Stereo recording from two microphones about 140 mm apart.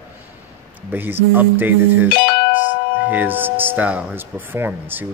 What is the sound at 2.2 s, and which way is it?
Doorbell, 70° left (ahead or behind).